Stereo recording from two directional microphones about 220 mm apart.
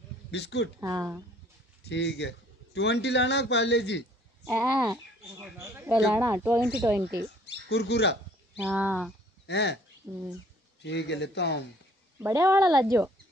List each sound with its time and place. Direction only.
0.3 s a man's voice: 50° left (ahead or behind)
0.7 s speech: 10° right (ahead or behind)
1.9 s a man's voice: 55° left (ahead or behind)
4.5 s speech: 5° right (ahead or behind)
7.6 s a man's voice: 50° left (ahead or behind)
8.5 s speech: 5° right (ahead or behind)
9.5 s a man's voice: 50° left (ahead or behind)
10.0 s speech: 15° right (ahead or behind)
10.8 s a man's voice: 50° left (ahead or behind)
12.2 s speech: 10° right (ahead or behind)